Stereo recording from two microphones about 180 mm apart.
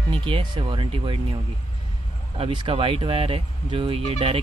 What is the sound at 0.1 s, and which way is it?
Speech, 30° right (ahead or behind).